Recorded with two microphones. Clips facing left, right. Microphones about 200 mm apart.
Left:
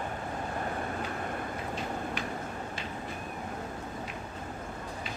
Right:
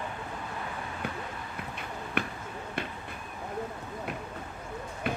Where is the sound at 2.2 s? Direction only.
60° right (ahead or behind).